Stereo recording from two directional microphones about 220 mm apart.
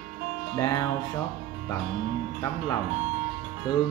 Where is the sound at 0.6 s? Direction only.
15° left (ahead or behind).